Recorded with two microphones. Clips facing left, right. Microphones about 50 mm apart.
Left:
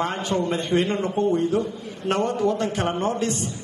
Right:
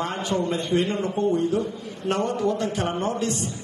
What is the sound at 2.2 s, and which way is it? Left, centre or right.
A man's voice, left.